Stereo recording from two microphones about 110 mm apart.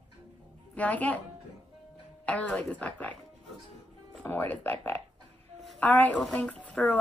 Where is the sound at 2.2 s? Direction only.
10° left (ahead or behind).